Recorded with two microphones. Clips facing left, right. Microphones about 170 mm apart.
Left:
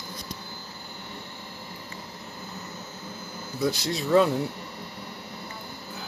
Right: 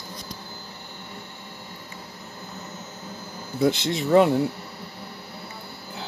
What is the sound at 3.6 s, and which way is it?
Speech, 25° right (ahead or behind).